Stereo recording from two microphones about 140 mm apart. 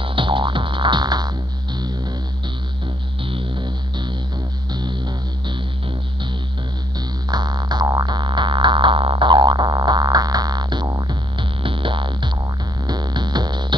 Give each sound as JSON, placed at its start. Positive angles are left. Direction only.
{"t": 0.0, "sound": "music", "side_deg": -35}
{"t": 3.3, "sound": "music", "side_deg": -35}
{"t": 7.2, "sound": "music", "side_deg": -30}